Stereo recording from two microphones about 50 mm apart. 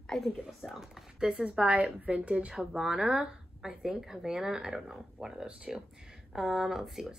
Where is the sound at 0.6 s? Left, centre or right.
Centre.